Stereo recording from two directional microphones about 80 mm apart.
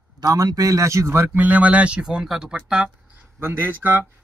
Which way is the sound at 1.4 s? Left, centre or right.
Centre.